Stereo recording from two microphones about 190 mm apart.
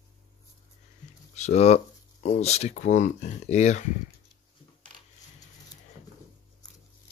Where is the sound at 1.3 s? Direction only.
35° left (ahead or behind).